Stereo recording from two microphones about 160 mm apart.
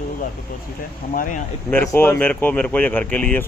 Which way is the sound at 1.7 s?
10° left (ahead or behind).